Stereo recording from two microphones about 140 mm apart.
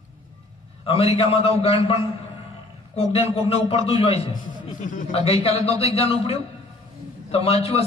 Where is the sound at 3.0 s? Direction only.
45° left (ahead or behind).